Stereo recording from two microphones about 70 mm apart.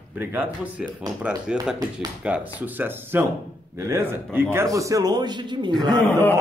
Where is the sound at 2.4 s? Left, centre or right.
Right.